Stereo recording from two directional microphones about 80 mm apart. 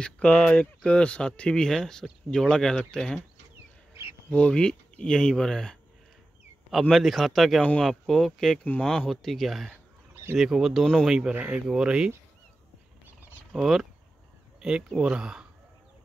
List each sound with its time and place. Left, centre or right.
0.0 s speech: centre
4.3 s speech: centre
11.3 s speech: right
11.6 s speech: centre
13.5 s speech: centre